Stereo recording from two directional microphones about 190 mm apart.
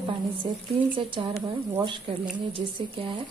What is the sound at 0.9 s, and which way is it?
Speech, 25° right (ahead or behind).